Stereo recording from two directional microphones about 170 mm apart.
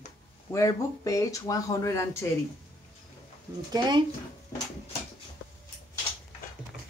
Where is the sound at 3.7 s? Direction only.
25° right (ahead or behind).